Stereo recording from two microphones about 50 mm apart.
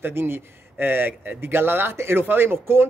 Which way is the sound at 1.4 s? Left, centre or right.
Right.